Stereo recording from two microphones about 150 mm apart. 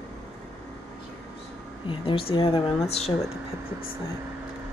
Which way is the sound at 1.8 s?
40° left (ahead or behind).